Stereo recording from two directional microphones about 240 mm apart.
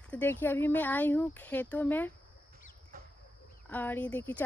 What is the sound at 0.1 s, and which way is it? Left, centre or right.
Speech, centre.